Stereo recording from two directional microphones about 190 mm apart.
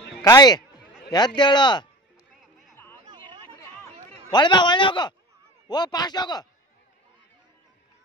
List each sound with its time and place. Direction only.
0.2 s a man's voice: 20° left (ahead or behind)
2.7 s chatter: 10° left (ahead or behind)
3.4 s a sound: 10° left (ahead or behind)
5.7 s a man's voice: 20° left (ahead or behind)